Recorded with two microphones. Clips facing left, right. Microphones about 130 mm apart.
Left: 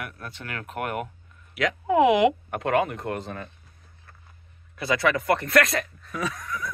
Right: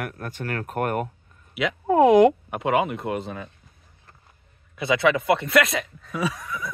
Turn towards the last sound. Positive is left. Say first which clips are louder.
# right 3 dB
turn(degrees=-5)  # may be behind; listen again after turning